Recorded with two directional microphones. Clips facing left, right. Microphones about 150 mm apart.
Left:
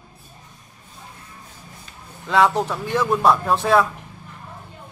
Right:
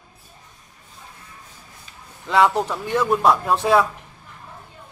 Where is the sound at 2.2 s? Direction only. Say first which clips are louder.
Even; centre (ahead or behind).